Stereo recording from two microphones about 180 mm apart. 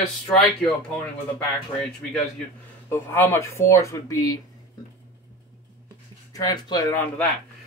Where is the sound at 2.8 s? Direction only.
15° left (ahead or behind).